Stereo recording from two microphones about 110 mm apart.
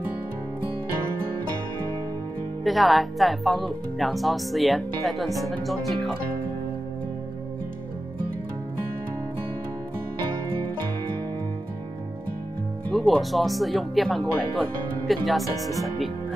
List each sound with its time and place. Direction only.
2.6 s speech: centre (ahead or behind)
12.9 s speech: centre (ahead or behind)